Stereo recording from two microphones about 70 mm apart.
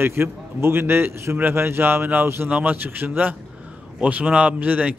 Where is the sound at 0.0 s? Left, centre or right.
Right.